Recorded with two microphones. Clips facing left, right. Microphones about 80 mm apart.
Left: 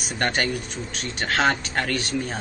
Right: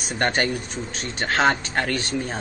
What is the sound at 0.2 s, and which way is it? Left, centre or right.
A man's voice, centre.